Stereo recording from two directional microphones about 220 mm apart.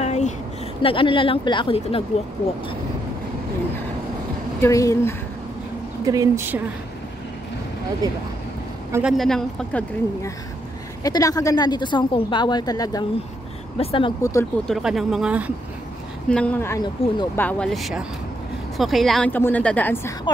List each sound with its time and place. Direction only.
0.0 s a sound: 30° left (ahead or behind)
0.8 s speech: 25° left (ahead or behind)
4.6 s a woman's voice: 15° left (ahead or behind)
6.0 s speech: 15° right (ahead or behind)
8.0 s speech: 15° right (ahead or behind)
8.9 s speech: centre (ahead or behind)
11.1 s speech: 15° left (ahead or behind)
14.7 s speech: centre (ahead or behind)
16.3 s a woman's voice: 5° left (ahead or behind)